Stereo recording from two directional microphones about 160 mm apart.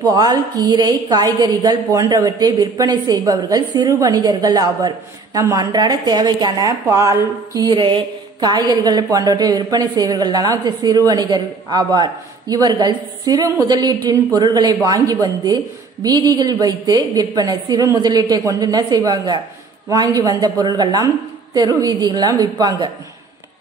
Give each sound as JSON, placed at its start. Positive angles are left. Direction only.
{"t": 0.0, "sound": "a woman's voice", "side_deg": -25}